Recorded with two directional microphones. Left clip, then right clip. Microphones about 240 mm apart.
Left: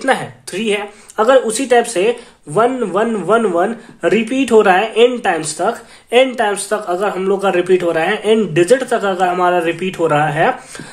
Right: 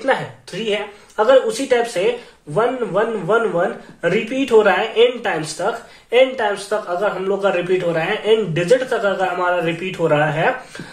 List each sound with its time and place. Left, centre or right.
0.0 s speech: left